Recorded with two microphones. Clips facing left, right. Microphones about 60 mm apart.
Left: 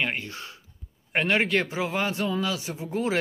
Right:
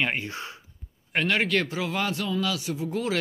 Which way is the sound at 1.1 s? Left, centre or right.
Left.